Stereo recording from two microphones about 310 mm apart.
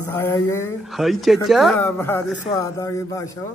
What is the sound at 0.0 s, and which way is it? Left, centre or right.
A woman's voice, centre.